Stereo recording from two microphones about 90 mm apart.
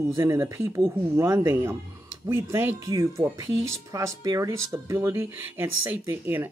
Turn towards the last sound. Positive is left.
turn(degrees=-20)  # may be behind; listen again after turning